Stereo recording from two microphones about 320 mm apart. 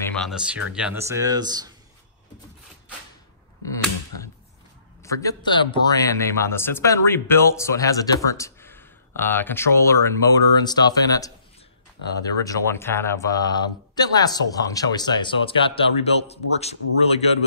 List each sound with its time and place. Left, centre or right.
0.1 s speech: centre
3.6 s a sound: centre
5.0 s a man's voice: centre
12.4 s a man's voice: centre